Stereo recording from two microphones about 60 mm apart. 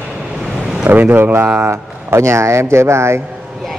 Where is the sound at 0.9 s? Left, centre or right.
Right.